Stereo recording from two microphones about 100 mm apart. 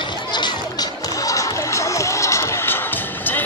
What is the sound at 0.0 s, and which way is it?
Music, 50° left (ahead or behind).